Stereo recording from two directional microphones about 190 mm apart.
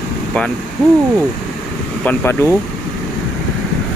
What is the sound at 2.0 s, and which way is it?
Speech, 10° left (ahead or behind).